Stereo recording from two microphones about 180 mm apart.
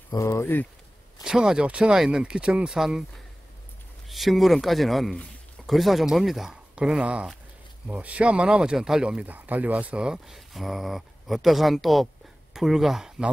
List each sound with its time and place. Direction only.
0.1 s speech: 15° left (ahead or behind)
1.2 s speech: 5° right (ahead or behind)
4.1 s speech: centre (ahead or behind)